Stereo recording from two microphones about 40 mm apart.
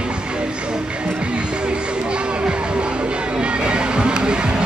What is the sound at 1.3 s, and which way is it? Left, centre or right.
Music, right.